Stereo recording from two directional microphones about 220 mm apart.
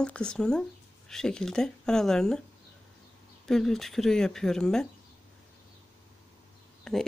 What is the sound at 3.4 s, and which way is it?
Speech, centre (ahead or behind).